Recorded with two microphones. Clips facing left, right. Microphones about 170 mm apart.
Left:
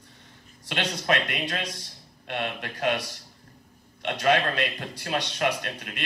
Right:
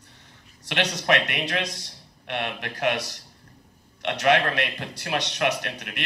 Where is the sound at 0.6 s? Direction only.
75° right (ahead or behind).